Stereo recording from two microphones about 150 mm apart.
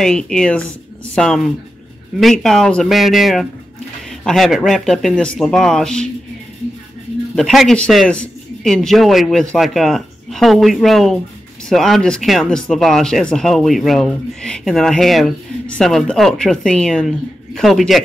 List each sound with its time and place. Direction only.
0.0 s speech: 5° left (ahead or behind)
7.3 s speech: centre (ahead or behind)